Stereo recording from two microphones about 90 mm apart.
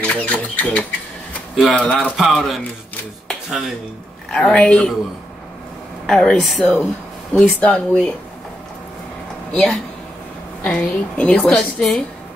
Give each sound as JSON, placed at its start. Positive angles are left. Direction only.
{"t": 0.0, "sound": "a sound", "side_deg": 15}
{"t": 1.7, "sound": "a woman's voice", "side_deg": 15}
{"t": 2.0, "sound": "speech", "side_deg": 5}
{"t": 3.3, "sound": "a sound", "side_deg": 0}
{"t": 4.3, "sound": "a woman's voice", "side_deg": 10}
{"t": 6.0, "sound": "speech", "side_deg": 5}
{"t": 6.6, "sound": "a woman's voice", "side_deg": 15}
{"t": 9.5, "sound": "a woman's voice", "side_deg": 10}